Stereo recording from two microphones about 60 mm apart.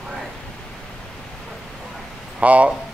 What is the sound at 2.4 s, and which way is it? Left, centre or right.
Speech, right.